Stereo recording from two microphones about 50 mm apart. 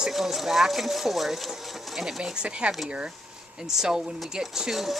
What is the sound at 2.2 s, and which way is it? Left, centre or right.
Speech, centre.